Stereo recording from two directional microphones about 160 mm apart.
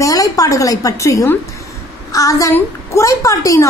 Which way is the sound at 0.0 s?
20° left (ahead or behind).